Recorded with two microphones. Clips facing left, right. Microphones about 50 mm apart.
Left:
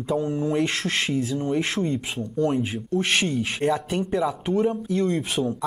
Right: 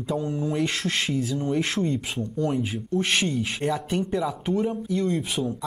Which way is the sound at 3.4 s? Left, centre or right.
Left.